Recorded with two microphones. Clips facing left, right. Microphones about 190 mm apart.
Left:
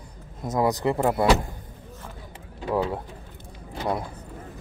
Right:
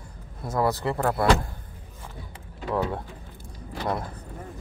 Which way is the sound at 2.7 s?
10° left (ahead or behind).